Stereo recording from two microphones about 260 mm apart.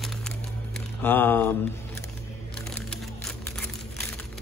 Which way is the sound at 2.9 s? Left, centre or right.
Centre.